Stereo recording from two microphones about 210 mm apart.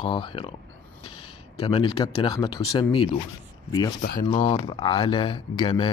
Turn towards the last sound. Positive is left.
turn(degrees=25)  # may be behind; listen again after turning